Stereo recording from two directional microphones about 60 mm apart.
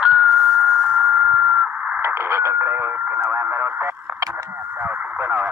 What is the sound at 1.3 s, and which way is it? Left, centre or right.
Sidetone, right.